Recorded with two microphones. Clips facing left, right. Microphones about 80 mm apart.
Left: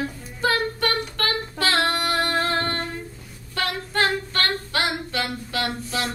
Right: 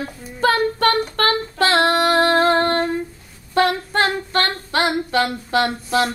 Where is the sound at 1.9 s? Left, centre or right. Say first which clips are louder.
Right 8 dB; right.